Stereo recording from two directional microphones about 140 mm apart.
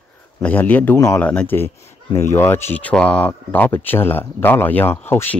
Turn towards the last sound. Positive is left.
turn(degrees=15)  # may be behind; listen again after turning